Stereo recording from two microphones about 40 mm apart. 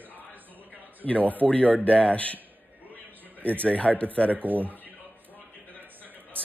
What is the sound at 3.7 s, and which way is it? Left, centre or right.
Speech, left.